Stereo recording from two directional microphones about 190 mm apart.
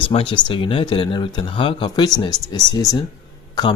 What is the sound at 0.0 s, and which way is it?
Speech, 30° left (ahead or behind).